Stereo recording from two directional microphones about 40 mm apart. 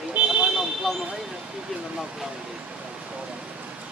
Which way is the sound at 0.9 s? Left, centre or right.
Centre.